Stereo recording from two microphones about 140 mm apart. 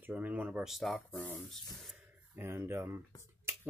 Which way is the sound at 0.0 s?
10° right (ahead or behind).